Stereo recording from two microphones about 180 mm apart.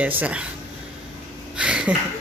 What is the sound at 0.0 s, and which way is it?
Speech, 10° right (ahead or behind).